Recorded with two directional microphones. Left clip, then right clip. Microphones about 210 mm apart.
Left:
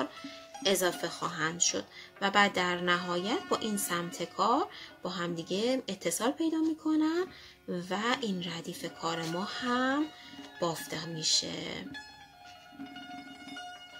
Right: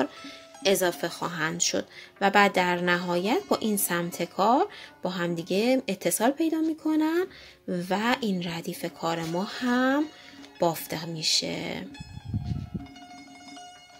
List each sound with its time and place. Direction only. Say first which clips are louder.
0.0 s speech: right 6 dB; 30° right (ahead or behind)